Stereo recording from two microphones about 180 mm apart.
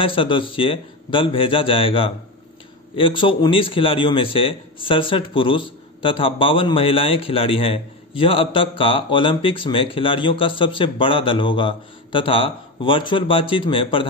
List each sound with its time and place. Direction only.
0.0 s a man's voice: 30° left (ahead or behind)